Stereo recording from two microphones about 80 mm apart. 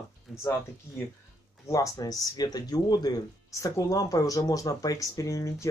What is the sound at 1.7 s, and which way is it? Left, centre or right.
Speech, left.